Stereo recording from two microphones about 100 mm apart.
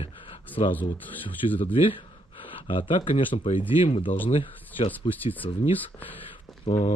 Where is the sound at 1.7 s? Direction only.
60° left (ahead or behind).